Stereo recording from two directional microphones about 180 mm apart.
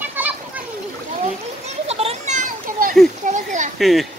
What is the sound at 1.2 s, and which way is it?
Children playing, 35° right (ahead or behind).